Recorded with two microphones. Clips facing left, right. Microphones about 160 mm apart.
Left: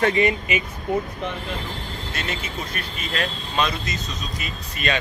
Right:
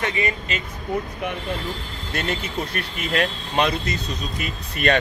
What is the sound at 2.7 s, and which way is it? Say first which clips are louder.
A man's voice: right 4 dB; 60° right (ahead or behind).